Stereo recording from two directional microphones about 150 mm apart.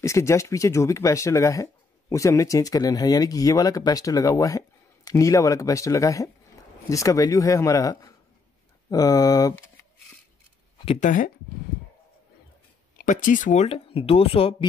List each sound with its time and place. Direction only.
0.0 s speech: 20° left (ahead or behind)
11.0 s speech: 60° left (ahead or behind)
12.9 s speech: 60° left (ahead or behind); by 14.5 s 40° left (ahead or behind)